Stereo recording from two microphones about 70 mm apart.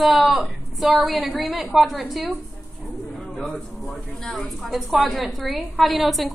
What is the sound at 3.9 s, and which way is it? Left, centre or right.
A woman's voice, centre.